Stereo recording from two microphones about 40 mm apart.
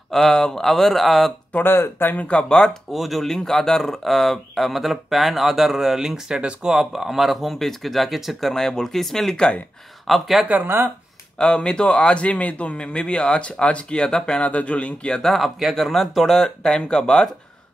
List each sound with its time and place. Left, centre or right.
0.1 s speech: centre
1.6 s speech: left
2.1 s speech: left
2.9 s speech: centre
6.7 s speech: centre
10.0 s speech: centre
11.3 s a man's voice: left
14.4 s speech: left
15.2 s speech: centre
16.6 s a man's voice: centre